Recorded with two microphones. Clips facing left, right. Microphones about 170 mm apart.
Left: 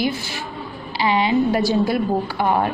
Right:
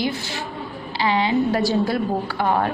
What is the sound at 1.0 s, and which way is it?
A woman's voice, 15° left (ahead or behind).